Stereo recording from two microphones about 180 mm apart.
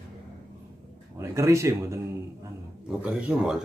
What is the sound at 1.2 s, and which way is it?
Speech, 15° right (ahead or behind).